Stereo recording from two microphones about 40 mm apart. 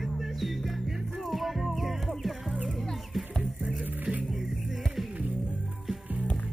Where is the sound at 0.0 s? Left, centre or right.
Centre.